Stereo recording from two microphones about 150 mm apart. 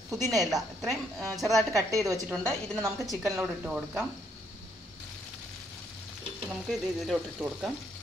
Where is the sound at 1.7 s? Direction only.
20° right (ahead or behind).